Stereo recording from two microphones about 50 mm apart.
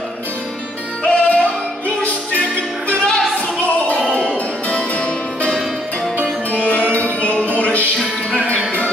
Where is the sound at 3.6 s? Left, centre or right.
Left.